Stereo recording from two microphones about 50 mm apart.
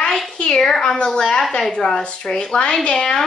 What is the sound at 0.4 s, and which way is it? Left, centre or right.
A woman's voice, centre.